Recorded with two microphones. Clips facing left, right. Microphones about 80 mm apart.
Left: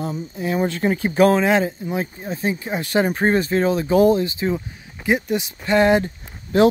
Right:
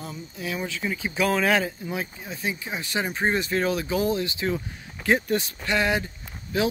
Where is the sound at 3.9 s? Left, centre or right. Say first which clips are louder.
Left 12 dB; left.